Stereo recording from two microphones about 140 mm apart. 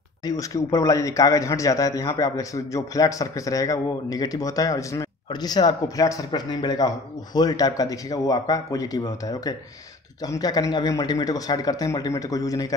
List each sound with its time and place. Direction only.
0.2 s speech: 25° left (ahead or behind)